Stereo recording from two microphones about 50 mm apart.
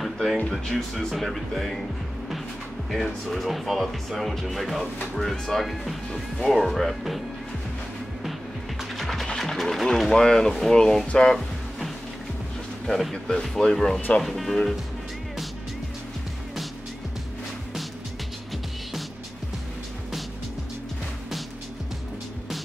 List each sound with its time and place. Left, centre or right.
0.0 s music: centre
0.5 s speech: centre
2.9 s speech: centre
8.9 s music: centre
9.4 s speech: centre
12.8 s speech: centre